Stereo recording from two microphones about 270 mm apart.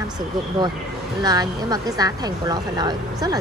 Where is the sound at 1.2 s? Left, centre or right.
Centre.